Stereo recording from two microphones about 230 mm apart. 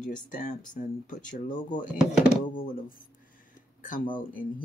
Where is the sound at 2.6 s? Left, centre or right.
Left.